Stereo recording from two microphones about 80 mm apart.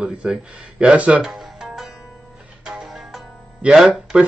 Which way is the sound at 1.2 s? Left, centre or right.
Centre.